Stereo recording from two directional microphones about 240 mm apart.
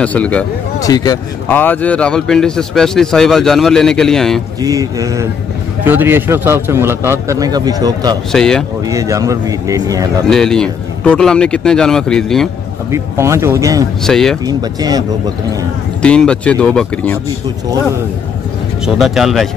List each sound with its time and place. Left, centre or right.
0.0 s a man's voice: centre
4.6 s a man's voice: centre
8.3 s a man's voice: centre
8.8 s a man's voice: centre
10.3 s a man's voice: centre
12.9 s a man's voice: centre
14.0 s a man's voice: centre
14.4 s a man's voice: centre
16.0 s a man's voice: centre
18.9 s a man's voice: centre